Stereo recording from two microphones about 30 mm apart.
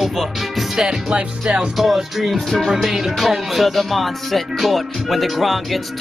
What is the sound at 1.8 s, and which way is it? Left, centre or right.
Music, centre.